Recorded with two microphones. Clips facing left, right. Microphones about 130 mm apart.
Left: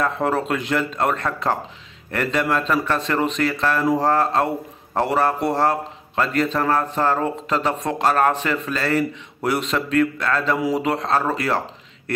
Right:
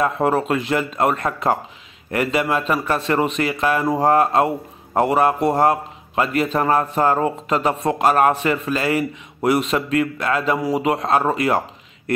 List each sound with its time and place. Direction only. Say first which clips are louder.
0.0 s speech: right 3 dB; 10° right (ahead or behind)